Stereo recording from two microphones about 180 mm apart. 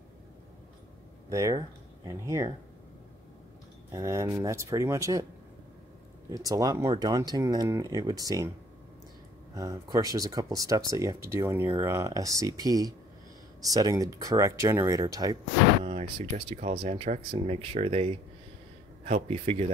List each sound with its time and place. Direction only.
1.3 s speech: 20° right (ahead or behind)
3.9 s speech: 20° right (ahead or behind)
6.3 s speech: 20° right (ahead or behind)
9.6 s speech: 20° right (ahead or behind)
15.8 s speech: 35° right (ahead or behind)